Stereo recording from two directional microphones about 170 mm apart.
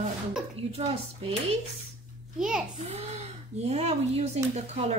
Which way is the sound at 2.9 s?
40° right (ahead or behind).